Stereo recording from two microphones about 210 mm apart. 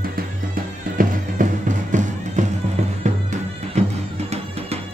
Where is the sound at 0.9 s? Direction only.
40° right (ahead or behind).